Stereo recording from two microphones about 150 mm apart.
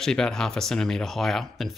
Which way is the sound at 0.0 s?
5° left (ahead or behind).